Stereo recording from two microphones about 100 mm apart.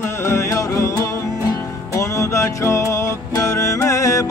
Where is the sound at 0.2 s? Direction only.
25° left (ahead or behind).